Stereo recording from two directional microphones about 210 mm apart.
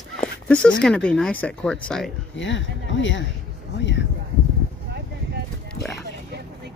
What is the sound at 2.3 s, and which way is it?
Speech, 60° left (ahead or behind).